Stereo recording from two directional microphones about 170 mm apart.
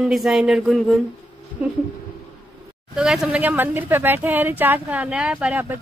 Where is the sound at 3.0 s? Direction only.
5° right (ahead or behind).